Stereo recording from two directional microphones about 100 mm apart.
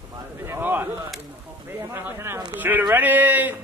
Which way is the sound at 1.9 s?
25° right (ahead or behind).